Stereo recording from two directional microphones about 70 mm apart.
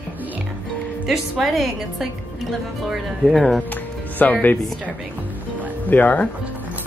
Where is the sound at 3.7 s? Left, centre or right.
Left.